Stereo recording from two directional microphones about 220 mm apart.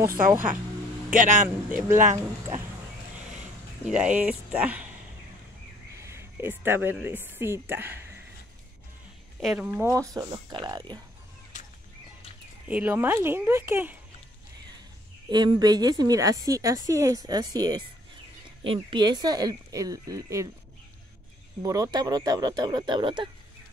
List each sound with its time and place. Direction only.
1.1 s speech: 35° right (ahead or behind)
3.8 s speech: 5° right (ahead or behind)
5.9 s a woman's voice: 10° right (ahead or behind)
9.4 s a woman's voice: 5° right (ahead or behind); by 11.0 s 20° right (ahead or behind)
12.6 s a woman's voice: 5° right (ahead or behind)
15.2 s a woman's voice: 20° right (ahead or behind)
21.6 s a woman's voice: 15° right (ahead or behind)